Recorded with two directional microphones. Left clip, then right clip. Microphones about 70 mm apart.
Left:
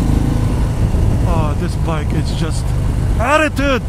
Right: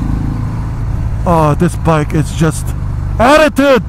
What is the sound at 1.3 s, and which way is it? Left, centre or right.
Speech, right.